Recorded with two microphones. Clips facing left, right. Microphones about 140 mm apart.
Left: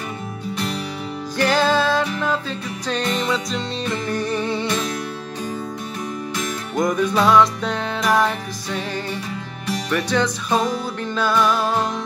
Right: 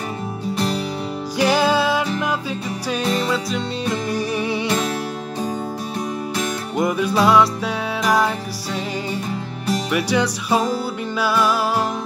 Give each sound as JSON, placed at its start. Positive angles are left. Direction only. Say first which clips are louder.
{"t": 1.4, "sound": "music", "louder": "right 1 dB", "side_deg": -10}
{"t": 4.6, "sound": "music", "louder": "right 2 dB", "side_deg": -35}
{"t": 6.8, "sound": "music", "louder": "even", "side_deg": -10}
{"t": 9.8, "sound": "music", "louder": "left 1 dB", "side_deg": -10}